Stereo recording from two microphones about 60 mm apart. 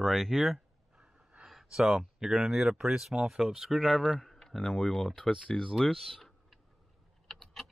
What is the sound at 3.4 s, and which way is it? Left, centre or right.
Speech, centre.